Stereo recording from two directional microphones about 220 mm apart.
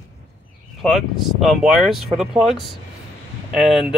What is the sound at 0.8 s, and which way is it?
Speech, centre (ahead or behind).